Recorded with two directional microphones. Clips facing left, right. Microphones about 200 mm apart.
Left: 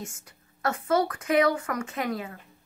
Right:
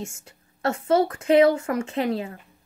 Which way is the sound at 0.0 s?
25° right (ahead or behind).